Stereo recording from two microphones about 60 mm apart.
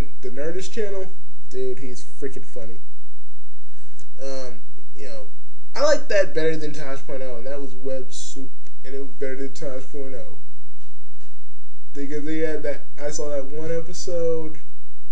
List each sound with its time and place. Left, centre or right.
0.0 s speech: centre
3.9 s speech: centre
11.9 s a man's voice: centre